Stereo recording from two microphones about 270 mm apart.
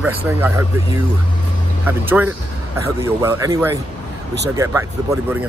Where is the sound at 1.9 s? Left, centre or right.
Centre.